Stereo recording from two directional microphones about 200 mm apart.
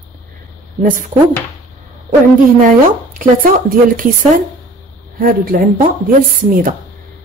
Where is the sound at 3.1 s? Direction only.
45° right (ahead or behind).